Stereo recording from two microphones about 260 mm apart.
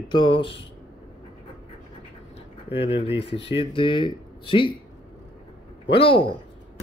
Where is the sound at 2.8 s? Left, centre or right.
Left.